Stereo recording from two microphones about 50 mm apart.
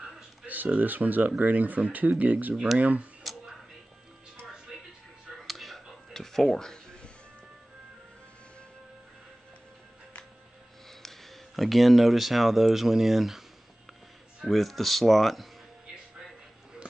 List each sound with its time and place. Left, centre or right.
0.7 s speech: right
5.5 s a sound: centre
10.9 s speech: centre
14.4 s speech: centre